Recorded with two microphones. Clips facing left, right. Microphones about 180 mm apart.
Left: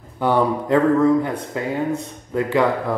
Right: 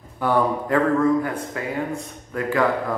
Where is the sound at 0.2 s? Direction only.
25° left (ahead or behind).